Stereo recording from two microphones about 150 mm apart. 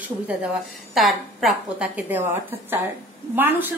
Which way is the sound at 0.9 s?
Centre (ahead or behind).